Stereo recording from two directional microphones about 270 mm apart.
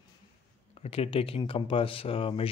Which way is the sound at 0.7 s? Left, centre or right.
Left.